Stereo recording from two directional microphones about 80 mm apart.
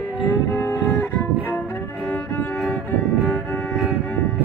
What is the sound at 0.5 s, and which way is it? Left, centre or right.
Music, left.